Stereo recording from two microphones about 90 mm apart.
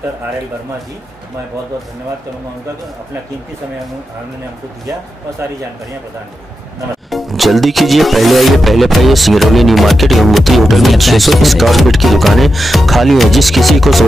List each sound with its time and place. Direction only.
7.1 s music: centre (ahead or behind)